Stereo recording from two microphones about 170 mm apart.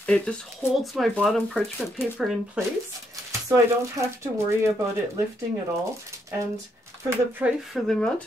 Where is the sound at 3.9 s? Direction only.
15° right (ahead or behind).